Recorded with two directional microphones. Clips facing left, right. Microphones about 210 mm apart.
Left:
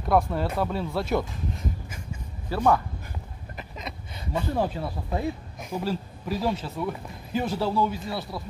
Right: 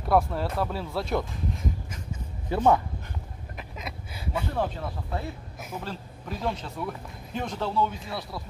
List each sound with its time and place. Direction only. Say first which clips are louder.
0.1 s speech: left 1 dB; centre (ahead or behind)
2.5 s a man's voice: right 1 dB; 20° right (ahead or behind)
3.5 s a sound: left 1 dB; 5° right (ahead or behind)
4.6 s speech: left 2 dB; 10° left (ahead or behind)